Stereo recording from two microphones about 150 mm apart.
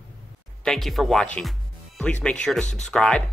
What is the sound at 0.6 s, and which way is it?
Speech, centre (ahead or behind).